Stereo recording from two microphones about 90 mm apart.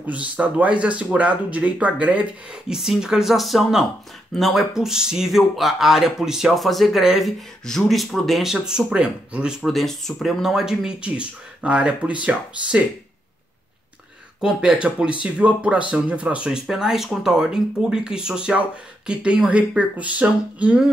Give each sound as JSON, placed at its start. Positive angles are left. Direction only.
{"t": 0.0, "sound": "speech", "side_deg": -15}
{"t": 2.7, "sound": "speech", "side_deg": -5}
{"t": 14.4, "sound": "speech", "side_deg": -10}